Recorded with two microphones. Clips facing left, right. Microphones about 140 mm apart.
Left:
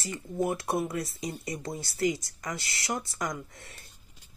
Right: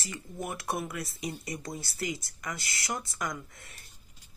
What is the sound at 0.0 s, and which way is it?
Speech, 25° left (ahead or behind).